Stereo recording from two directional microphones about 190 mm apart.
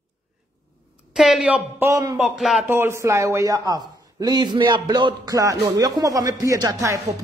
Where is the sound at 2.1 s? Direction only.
Centre (ahead or behind).